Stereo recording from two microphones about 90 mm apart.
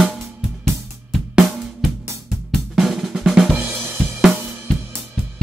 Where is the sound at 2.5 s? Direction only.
Centre (ahead or behind).